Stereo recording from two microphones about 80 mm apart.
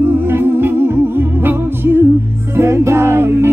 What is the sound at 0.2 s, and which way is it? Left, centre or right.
Music, right.